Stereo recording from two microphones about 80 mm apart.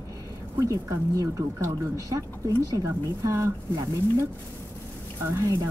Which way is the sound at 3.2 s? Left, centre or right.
Right.